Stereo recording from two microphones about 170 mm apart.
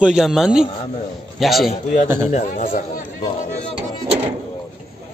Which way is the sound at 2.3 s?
45° left (ahead or behind).